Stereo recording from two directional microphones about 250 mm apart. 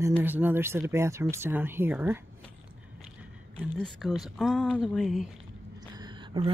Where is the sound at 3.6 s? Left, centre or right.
Centre.